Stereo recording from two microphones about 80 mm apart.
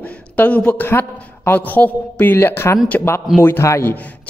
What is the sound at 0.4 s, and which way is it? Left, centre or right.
A woman's voice, centre.